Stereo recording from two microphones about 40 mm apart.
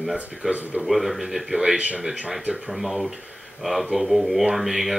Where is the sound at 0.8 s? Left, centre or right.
Centre.